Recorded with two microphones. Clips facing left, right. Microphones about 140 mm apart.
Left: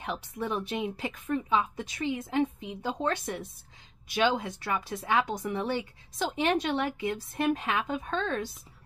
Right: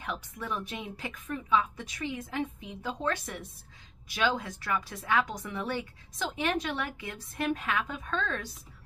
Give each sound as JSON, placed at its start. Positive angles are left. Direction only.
{"t": 0.0, "sound": "speech", "side_deg": 30}